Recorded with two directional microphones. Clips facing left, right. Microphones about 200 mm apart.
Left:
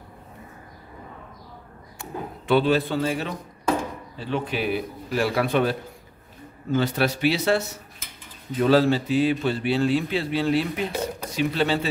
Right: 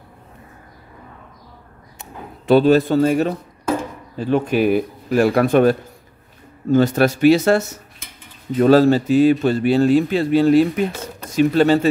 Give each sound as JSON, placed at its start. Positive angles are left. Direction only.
{"t": 2.4, "sound": "a man's voice", "side_deg": -40}